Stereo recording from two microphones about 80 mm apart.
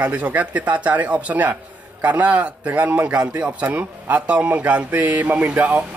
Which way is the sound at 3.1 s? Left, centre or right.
Centre.